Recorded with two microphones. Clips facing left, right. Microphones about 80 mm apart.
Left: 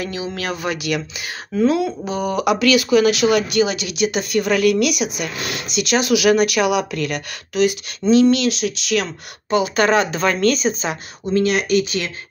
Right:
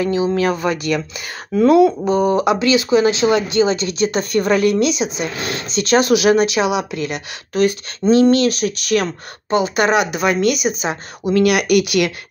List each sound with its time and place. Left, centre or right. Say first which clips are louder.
0.0 s speech: right 9 dB; right
2.0 s speech: right 4 dB; right
7.5 s speech: right 1 dB; right
9.5 s speech: right 1 dB; right
11.2 s speech: right 3 dB; right